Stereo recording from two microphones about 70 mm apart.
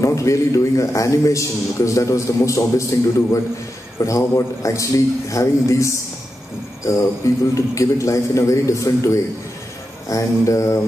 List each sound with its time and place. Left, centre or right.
0.0 s a man's voice: left